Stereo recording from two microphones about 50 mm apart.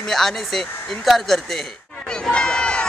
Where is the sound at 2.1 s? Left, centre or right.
Centre.